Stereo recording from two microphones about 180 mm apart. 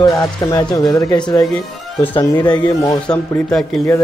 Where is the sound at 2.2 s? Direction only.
25° left (ahead or behind).